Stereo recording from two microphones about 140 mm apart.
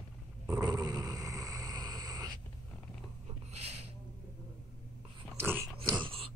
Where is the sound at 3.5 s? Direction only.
50° right (ahead or behind).